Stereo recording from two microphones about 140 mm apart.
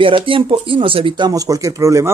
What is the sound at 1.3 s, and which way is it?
Speech, 25° right (ahead or behind).